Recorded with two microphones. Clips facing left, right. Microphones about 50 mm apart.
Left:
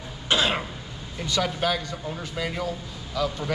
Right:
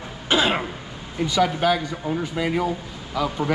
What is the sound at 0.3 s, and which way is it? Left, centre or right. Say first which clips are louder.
Throat clearing: right 3 dB; centre.